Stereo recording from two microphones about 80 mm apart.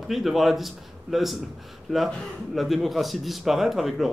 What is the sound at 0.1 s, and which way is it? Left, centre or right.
Speech, centre.